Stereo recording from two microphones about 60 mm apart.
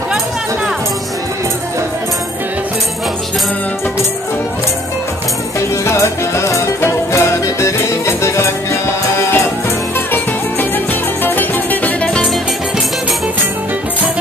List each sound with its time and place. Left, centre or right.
5.9 s music: left
11.2 s music: left